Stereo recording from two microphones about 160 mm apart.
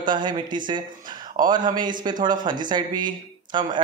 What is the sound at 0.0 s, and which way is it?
Speech, 30° right (ahead or behind).